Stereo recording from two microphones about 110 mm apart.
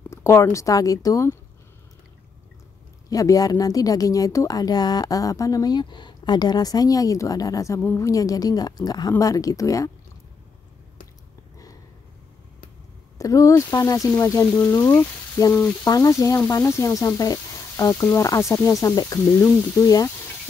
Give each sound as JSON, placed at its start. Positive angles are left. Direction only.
{"t": 0.1, "sound": "speech", "side_deg": 25}
{"t": 3.1, "sound": "speech", "side_deg": 35}
{"t": 13.2, "sound": "speech", "side_deg": 30}
{"t": 15.8, "sound": "speech", "side_deg": 30}